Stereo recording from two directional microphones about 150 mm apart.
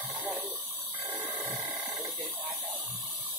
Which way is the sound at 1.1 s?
10° right (ahead or behind).